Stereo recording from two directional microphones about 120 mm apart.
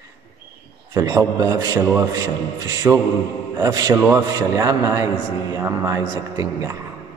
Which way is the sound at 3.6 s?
30° right (ahead or behind).